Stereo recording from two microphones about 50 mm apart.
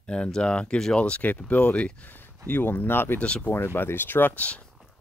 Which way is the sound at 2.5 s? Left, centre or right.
Left.